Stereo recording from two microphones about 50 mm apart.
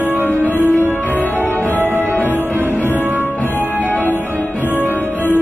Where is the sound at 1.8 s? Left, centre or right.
Right.